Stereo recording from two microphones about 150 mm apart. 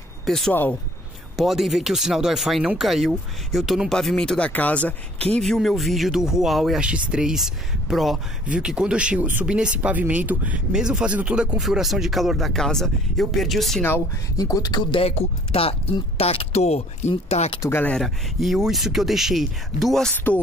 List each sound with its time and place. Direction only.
0.2 s speech: 5° left (ahead or behind)
1.3 s speech: centre (ahead or behind)
13.8 s speech: 20° left (ahead or behind); by 17.6 s 40° left (ahead or behind)
17.6 s speech: 15° left (ahead or behind)
17.9 s speech: centre (ahead or behind)